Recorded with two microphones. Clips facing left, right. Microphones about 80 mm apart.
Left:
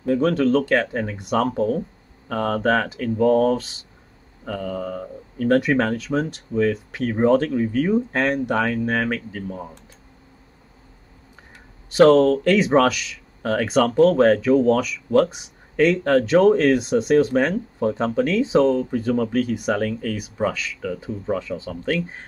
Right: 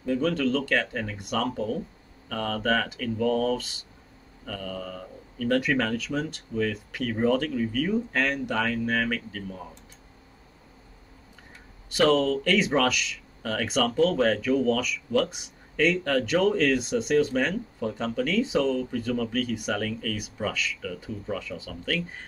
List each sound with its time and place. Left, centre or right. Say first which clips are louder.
0.1 s speech: left 7 dB; left
11.9 s speech: left 8 dB; left